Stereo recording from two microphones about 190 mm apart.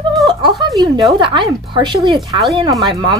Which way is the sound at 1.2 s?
25° right (ahead or behind).